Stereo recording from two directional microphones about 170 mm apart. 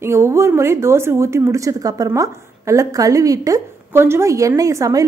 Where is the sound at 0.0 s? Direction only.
15° right (ahead or behind).